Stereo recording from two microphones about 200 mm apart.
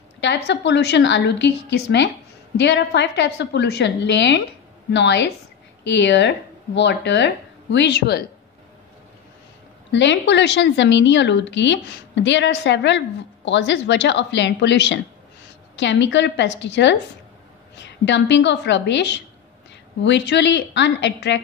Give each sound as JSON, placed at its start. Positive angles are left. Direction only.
{"t": 0.2, "sound": "a woman's voice", "side_deg": 60}
{"t": 9.8, "sound": "a woman's voice", "side_deg": 65}